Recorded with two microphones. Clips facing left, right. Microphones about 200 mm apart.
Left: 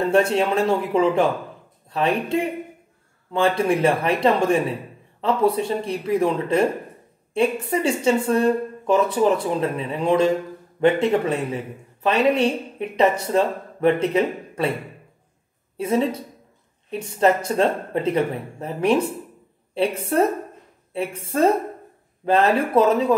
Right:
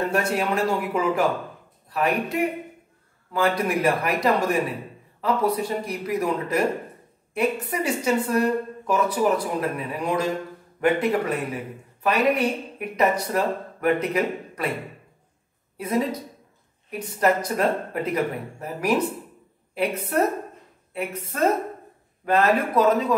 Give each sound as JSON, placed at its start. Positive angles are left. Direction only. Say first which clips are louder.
{"t": 0.1, "sound": "a man's voice", "louder": "left 5 dB", "side_deg": 25}
{"t": 15.8, "sound": "a man's voice", "louder": "left 3 dB", "side_deg": 30}
{"t": 17.2, "sound": "a man's voice", "louder": "left 3 dB", "side_deg": 25}